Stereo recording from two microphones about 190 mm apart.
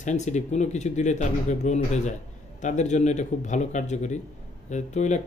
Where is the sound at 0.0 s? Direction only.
40° left (ahead or behind).